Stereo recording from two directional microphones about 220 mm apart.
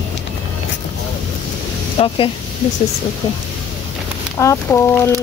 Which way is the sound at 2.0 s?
30° left (ahead or behind).